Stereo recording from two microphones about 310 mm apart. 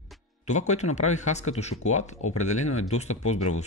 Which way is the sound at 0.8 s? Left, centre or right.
Left.